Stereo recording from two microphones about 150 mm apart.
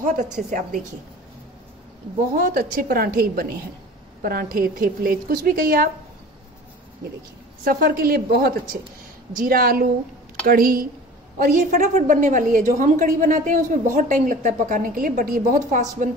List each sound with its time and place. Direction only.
0.0 s a woman's voice: 55° right (ahead or behind)
2.3 s a woman's voice: 80° right
7.6 s a woman's voice: 80° right
9.4 s a woman's voice: 75° right (ahead or behind); by 16.1 s 60° right (ahead or behind)